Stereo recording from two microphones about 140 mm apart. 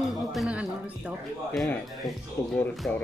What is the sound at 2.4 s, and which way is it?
Speech, 15° left (ahead or behind).